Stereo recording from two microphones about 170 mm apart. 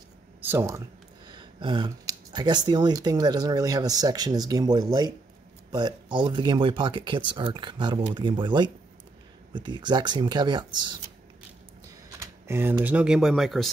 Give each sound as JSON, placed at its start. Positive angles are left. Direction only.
{"t": 0.4, "sound": "speech", "side_deg": -15}
{"t": 12.2, "sound": "speech", "side_deg": -15}